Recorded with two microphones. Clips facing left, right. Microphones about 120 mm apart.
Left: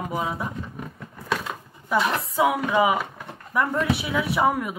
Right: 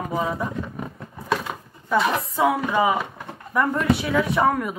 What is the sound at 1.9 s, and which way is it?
Speech, centre (ahead or behind).